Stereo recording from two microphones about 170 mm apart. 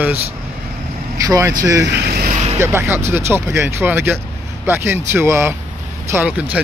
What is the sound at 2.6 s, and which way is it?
Speech, 15° right (ahead or behind).